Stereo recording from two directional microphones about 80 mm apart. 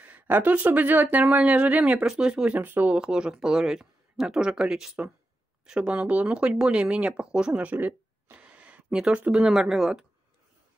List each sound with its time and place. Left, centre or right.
0.0 s speech: right
3.0 s speech: centre